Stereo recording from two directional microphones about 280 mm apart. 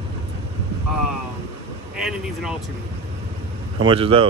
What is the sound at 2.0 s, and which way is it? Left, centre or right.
Speech, centre.